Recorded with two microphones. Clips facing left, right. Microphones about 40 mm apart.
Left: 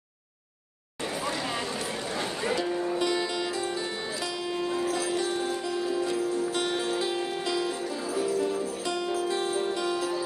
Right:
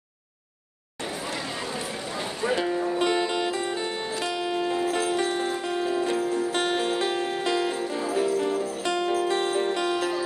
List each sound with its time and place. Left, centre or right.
2.7 s music: centre
3.0 s music: right